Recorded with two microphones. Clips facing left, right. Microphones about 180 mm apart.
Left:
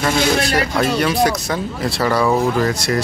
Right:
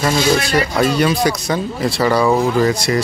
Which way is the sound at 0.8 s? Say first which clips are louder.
Right 1 dB; centre (ahead or behind).